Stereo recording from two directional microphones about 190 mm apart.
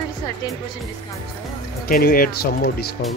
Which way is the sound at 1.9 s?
50° left (ahead or behind).